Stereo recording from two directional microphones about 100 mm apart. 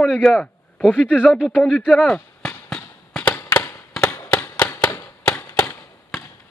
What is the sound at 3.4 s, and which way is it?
Fireworks, 20° left (ahead or behind).